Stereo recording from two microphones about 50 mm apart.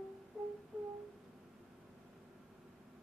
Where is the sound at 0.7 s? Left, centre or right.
Right.